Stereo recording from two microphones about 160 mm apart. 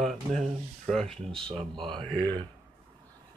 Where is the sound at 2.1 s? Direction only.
25° right (ahead or behind).